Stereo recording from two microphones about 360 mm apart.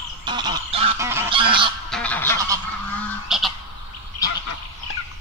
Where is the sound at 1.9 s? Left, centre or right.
Centre.